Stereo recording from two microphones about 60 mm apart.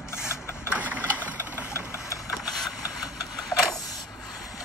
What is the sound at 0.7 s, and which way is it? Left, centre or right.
Sewing machine, right.